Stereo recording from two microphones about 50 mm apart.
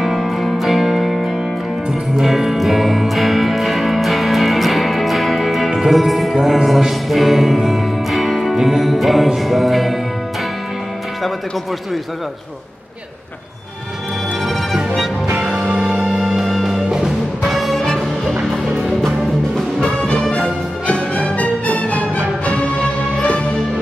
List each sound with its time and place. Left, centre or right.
0.0 s music: centre
15.3 s music: centre
17.7 s music: centre
20.0 s music: left